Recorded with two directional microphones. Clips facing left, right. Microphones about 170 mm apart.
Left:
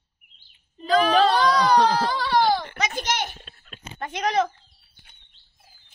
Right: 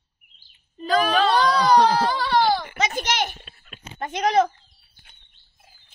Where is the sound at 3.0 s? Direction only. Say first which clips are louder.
Right 2 dB; 80° right.